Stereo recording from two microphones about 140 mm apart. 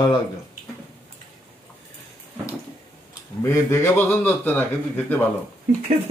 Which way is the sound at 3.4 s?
15° left (ahead or behind).